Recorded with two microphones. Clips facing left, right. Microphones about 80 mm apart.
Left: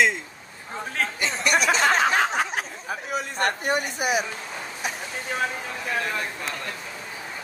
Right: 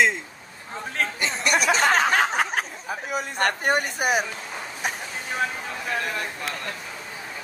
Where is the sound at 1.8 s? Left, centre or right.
Right.